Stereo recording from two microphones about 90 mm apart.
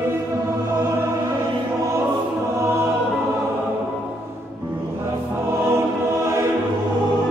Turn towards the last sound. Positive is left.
turn(degrees=-30)  # may be behind; listen again after turning